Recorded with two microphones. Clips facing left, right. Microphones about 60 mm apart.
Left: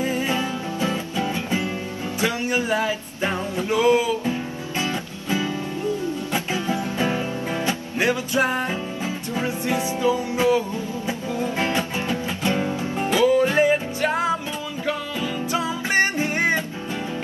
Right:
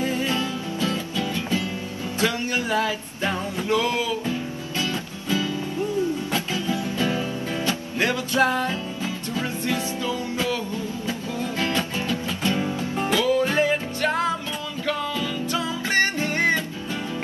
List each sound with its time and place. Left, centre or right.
0.0 s music: left